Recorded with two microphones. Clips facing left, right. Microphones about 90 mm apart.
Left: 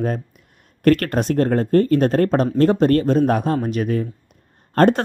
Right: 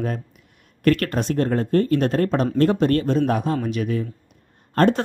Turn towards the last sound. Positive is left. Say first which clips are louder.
# left 3 dB
turn(degrees=40)  # may be behind; listen again after turning